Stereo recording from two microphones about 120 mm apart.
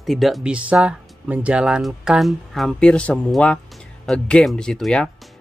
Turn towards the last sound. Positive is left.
turn(degrees=5)  # may be behind; listen again after turning